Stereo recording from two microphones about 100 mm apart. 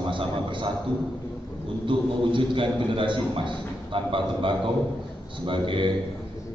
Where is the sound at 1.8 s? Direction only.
55° right (ahead or behind).